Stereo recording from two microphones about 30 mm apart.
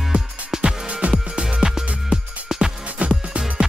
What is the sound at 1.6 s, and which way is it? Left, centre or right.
Music, centre.